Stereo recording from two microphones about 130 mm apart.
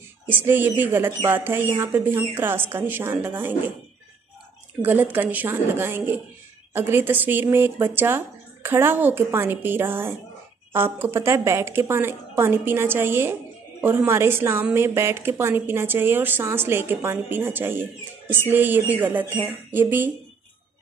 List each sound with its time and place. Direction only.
0.3 s a woman's voice: 15° right (ahead or behind)
4.8 s a woman's voice: 15° right (ahead or behind)